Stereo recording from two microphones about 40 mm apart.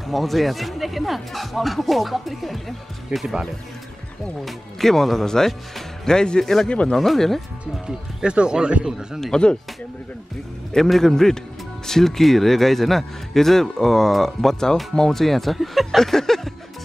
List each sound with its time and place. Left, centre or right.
0.0 s speech: centre
4.5 s speech: centre
6.4 s speech: centre
7.8 s speech: right
9.3 s speech: left
10.9 s speech: centre
16.0 s a sound: centre